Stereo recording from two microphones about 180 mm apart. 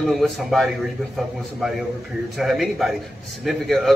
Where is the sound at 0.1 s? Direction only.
Centre (ahead or behind).